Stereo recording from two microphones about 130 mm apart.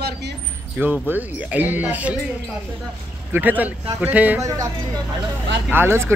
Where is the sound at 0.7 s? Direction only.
15° right (ahead or behind).